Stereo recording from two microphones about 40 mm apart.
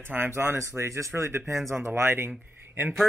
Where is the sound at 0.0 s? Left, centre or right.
Right.